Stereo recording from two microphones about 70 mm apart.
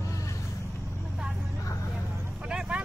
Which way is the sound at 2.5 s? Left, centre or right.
Centre.